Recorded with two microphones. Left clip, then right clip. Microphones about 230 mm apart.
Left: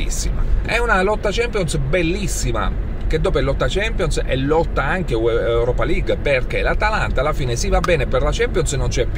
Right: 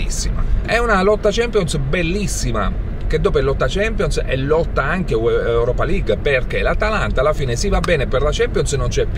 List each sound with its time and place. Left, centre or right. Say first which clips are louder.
0.7 s speech: right 2 dB; centre